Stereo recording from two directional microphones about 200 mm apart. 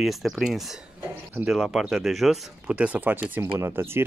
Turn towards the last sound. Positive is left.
turn(degrees=-10)  # may be behind; listen again after turning